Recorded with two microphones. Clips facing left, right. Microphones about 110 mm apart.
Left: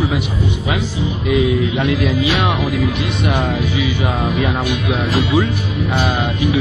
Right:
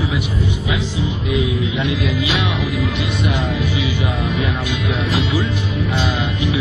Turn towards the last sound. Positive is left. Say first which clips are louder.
# left 3 dB
turn(degrees=20)  # may be behind; listen again after turning